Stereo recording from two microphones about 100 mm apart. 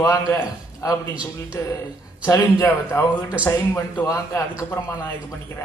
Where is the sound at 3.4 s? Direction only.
20° left (ahead or behind).